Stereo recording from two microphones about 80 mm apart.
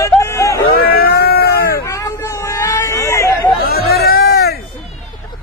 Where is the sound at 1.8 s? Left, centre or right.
Left.